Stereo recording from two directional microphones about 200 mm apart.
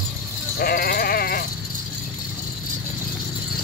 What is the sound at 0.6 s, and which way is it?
Sheep, 50° left (ahead or behind).